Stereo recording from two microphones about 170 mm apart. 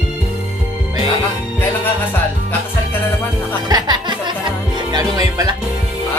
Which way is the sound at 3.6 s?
25° right (ahead or behind).